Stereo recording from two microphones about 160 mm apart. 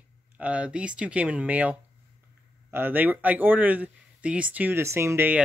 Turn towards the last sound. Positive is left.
turn(degrees=-15)  # may be behind; listen again after turning